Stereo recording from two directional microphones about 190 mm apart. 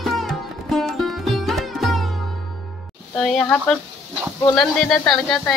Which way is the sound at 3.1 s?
5° left (ahead or behind).